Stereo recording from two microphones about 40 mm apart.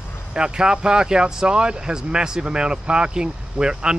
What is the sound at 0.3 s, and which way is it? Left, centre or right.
Speech, centre.